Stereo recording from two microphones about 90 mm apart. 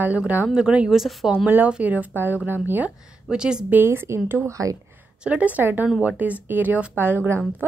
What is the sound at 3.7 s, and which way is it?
Speech, 25° right (ahead or behind).